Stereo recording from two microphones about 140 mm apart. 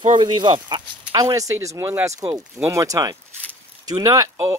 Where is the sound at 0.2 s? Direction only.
35° right (ahead or behind).